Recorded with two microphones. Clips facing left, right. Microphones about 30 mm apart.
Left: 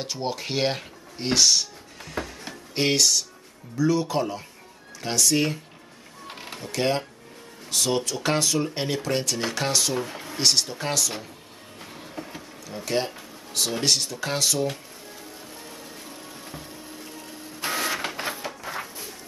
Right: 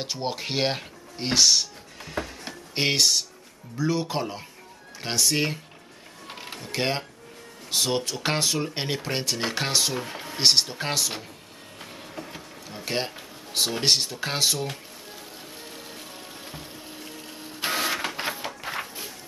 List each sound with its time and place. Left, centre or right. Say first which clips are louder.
0.0 s speech: even; centre
2.7 s speech: left 1 dB; centre
6.2 s mechanisms: left 1 dB; centre
6.7 s speech: left 2 dB; centre
9.9 s speech: left 2 dB; centre
11.8 s train: left 1 dB; centre
12.8 s a sound: left 3 dB; right
13.7 s speech: even; right
15.6 s a sound: even; right
17.4 s printer: right 1 dB; right
17.7 s printer: even; centre
18.6 s music: right 1 dB; right